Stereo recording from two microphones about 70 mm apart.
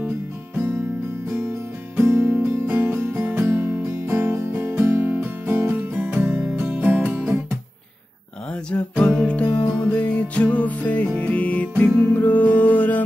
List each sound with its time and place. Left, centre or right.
2.0 s music: right
5.0 s music: right
5.5 s music: right
5.9 s music: right
6.4 s music: centre
6.8 s music: right
8.6 s music: centre